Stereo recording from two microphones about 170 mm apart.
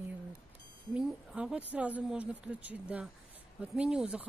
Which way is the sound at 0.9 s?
5° right (ahead or behind).